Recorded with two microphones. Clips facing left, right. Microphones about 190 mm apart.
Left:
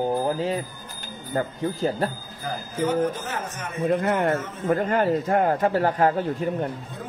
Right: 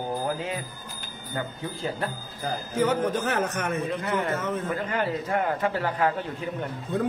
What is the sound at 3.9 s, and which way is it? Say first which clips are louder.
A man's voice: left 6 dB; 55° left (ahead or behind).